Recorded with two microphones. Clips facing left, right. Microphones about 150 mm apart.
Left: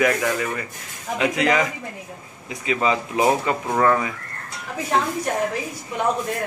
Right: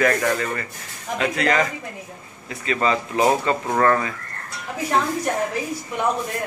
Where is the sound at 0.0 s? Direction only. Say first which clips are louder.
Even; 10° left (ahead or behind).